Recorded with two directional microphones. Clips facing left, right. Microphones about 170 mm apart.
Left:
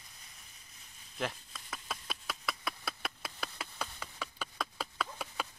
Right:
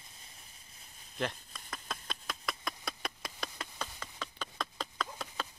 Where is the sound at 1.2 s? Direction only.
Centre (ahead or behind).